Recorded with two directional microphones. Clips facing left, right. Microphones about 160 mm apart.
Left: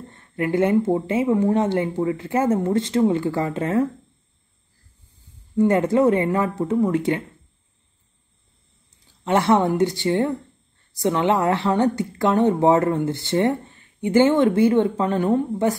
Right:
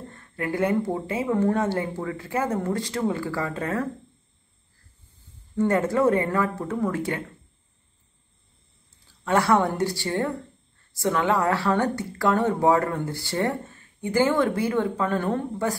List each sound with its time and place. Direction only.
0.1 s a woman's voice: 20° left (ahead or behind)
5.6 s a woman's voice: 20° left (ahead or behind)
9.2 s a woman's voice: 20° left (ahead or behind)